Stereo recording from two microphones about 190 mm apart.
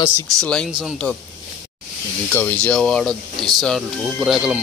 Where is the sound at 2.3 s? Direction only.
10° left (ahead or behind).